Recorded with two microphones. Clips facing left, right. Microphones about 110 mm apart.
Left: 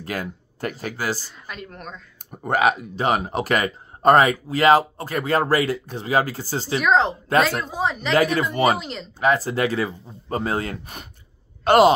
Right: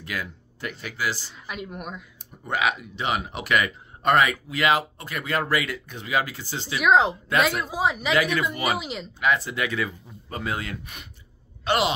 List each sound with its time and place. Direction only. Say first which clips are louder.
0.0 s speech: left 4 dB; 40° left (ahead or behind)
1.5 s speech: right 2 dB; 10° right (ahead or behind)
2.3 s speech: left 6 dB; 45° left (ahead or behind)
6.8 s a woman's voice: right 1 dB; 5° right (ahead or behind)
8.1 s speech: left 7 dB; 40° left (ahead or behind)
8.7 s a woman's voice: even; 5° right (ahead or behind)
9.2 s speech: left 5 dB; 40° left (ahead or behind)